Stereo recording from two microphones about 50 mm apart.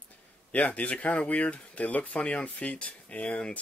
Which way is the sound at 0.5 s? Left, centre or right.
Left.